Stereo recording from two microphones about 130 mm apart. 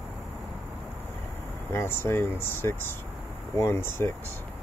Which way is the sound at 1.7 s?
15° left (ahead or behind).